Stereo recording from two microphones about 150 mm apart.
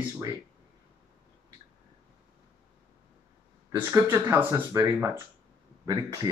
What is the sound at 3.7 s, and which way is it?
Speech, 15° right (ahead or behind).